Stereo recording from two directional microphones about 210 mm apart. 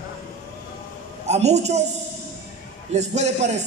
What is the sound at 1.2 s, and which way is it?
Speech, 30° right (ahead or behind).